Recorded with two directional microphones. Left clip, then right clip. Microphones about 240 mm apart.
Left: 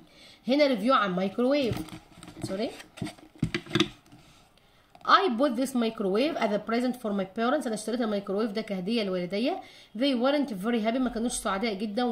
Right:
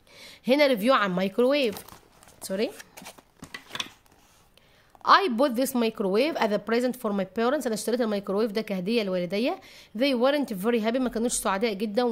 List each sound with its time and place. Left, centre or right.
0.2 s speech: right
5.0 s speech: right